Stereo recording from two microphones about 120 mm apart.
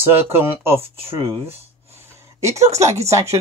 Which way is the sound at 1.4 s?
20° right (ahead or behind).